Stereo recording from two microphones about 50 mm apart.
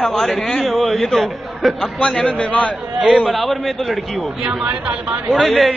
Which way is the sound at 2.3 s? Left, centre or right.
Left.